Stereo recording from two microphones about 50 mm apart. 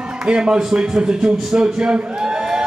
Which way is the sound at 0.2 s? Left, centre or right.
Centre.